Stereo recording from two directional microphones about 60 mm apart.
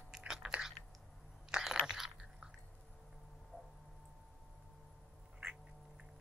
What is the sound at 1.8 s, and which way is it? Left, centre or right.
Biting, centre.